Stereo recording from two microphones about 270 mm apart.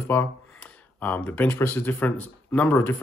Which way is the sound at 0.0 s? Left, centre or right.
Centre.